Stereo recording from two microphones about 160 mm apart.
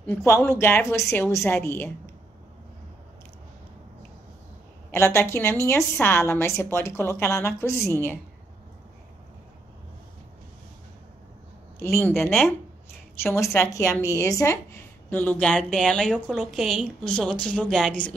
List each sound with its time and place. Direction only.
0.0 s a woman's voice: 15° left (ahead or behind)
4.9 s a woman's voice: 15° left (ahead or behind)
11.8 s a woman's voice: 15° left (ahead or behind)
12.1 s a woman's voice: centre (ahead or behind)
13.7 s a woman's voice: 20° left (ahead or behind)